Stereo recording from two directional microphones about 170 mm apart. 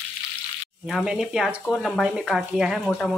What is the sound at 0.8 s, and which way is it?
Speech, 5° right (ahead or behind).